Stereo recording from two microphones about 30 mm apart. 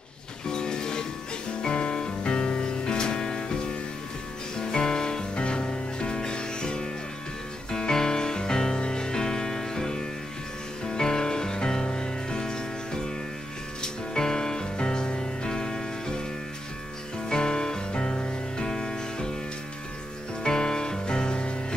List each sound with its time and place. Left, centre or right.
0.5 s music: left
4.6 s music: left
5.3 s music: left
14.1 s music: left
17.3 s music: left
20.4 s music: left